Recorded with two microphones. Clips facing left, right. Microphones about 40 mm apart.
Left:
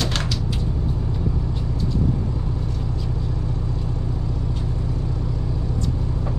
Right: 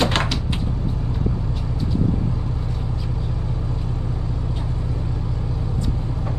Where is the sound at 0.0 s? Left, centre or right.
Right.